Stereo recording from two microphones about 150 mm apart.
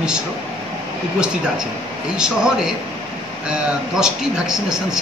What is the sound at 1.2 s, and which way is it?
Speech, 5° right (ahead or behind).